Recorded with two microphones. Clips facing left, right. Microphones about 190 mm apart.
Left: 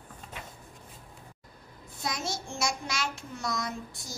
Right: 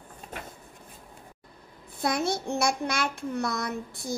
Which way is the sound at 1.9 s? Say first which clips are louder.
Right 8 dB; 60° right (ahead or behind).